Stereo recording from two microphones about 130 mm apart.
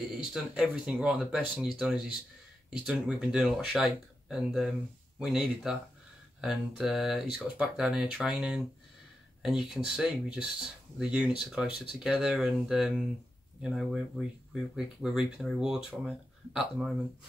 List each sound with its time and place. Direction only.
0.1 s speech: 5° right (ahead or behind)